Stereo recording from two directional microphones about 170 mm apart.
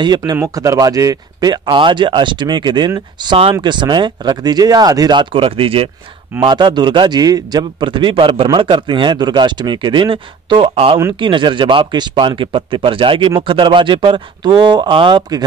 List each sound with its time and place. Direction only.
0.0 s a man's voice: 25° right (ahead or behind)